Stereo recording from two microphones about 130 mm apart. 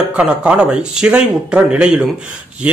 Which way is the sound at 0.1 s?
10° right (ahead or behind).